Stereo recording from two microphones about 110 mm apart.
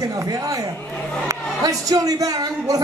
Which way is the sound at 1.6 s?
35° right (ahead or behind).